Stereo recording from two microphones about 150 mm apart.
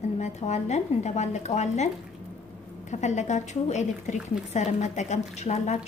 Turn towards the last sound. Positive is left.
turn(degrees=50)  # may be behind; listen again after turning